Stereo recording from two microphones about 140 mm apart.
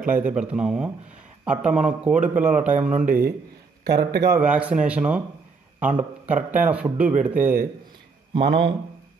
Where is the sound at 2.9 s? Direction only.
70° right (ahead or behind).